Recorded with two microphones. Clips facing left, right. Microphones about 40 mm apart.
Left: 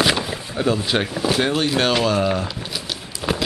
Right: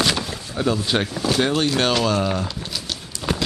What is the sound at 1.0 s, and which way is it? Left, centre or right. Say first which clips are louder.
Speech: left 1 dB; centre.